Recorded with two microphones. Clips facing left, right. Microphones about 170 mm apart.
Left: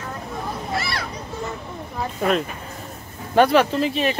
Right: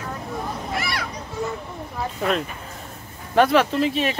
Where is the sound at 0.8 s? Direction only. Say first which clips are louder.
Even; 15° right (ahead or behind).